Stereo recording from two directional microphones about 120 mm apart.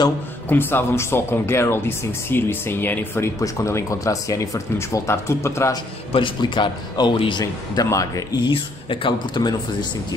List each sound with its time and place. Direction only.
0.5 s speech: 15° left (ahead or behind)
6.1 s a man's voice: 40° left (ahead or behind)
8.5 s a man's voice: 45° left (ahead or behind)